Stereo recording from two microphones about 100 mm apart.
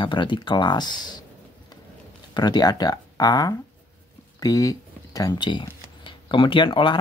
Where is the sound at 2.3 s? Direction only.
45° left (ahead or behind).